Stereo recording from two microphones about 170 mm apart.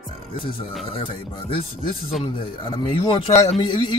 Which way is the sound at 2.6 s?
30° left (ahead or behind).